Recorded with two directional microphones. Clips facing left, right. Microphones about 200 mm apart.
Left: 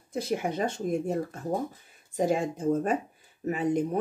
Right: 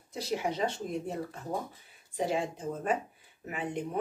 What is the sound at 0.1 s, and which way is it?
Speech, 50° left (ahead or behind).